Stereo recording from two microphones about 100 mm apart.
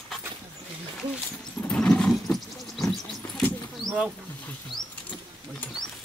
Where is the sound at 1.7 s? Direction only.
10° left (ahead or behind).